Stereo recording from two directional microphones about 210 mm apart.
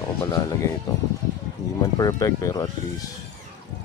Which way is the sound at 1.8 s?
15° left (ahead or behind).